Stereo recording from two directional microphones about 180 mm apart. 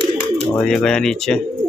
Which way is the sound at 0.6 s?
5° left (ahead or behind).